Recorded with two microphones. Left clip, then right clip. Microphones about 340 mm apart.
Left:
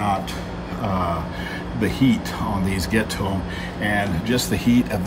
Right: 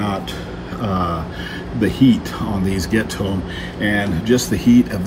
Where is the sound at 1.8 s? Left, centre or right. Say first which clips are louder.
Right 5 dB; centre.